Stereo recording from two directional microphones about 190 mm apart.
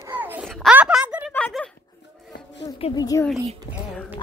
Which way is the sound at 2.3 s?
65° left (ahead or behind).